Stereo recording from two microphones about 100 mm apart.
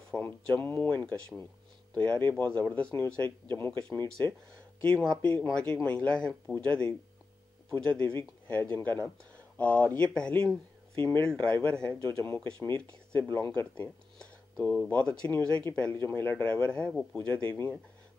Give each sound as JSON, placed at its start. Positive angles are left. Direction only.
{"t": 0.1, "sound": "speech", "side_deg": 15}
{"t": 4.8, "sound": "speech", "side_deg": 10}
{"t": 7.9, "sound": "speech", "side_deg": 15}
{"t": 12.0, "sound": "speech", "side_deg": 25}
{"t": 12.4, "sound": "speech", "side_deg": 10}
{"t": 17.3, "sound": "speech", "side_deg": 20}